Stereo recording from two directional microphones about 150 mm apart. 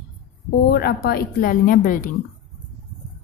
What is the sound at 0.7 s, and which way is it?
A woman's voice, 85° left.